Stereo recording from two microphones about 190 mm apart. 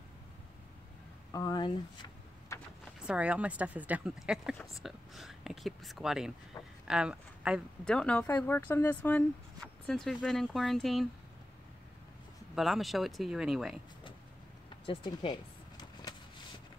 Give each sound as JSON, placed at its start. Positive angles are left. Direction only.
{"t": 1.3, "sound": "speech", "side_deg": 20}
{"t": 2.5, "sound": "a sound", "side_deg": 15}
{"t": 3.1, "sound": "speech", "side_deg": -5}
{"t": 12.5, "sound": "speech", "side_deg": 0}
{"t": 14.9, "sound": "speech", "side_deg": 25}
{"t": 15.8, "sound": "a sound", "side_deg": 20}